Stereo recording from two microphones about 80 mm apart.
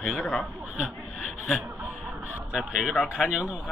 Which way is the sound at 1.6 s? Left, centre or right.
Centre.